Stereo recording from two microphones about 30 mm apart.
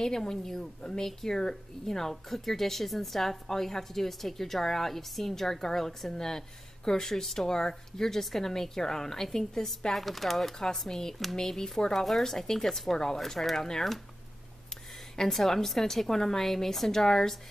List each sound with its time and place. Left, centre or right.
0.0 s a woman's voice: centre
9.9 s speech: centre
10.9 s a woman's voice: centre
15.1 s a woman's voice: centre